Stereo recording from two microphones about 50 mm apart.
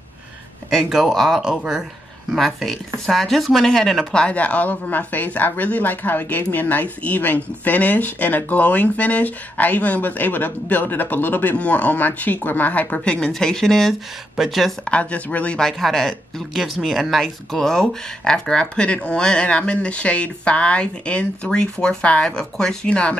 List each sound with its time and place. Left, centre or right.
0.8 s speech: centre
2.3 s speech: centre
4.0 s a woman's voice: centre; by 13.0 s left
13.0 s speech: centre
14.9 s speech: left
15.8 s speech: centre
22.8 s speech: left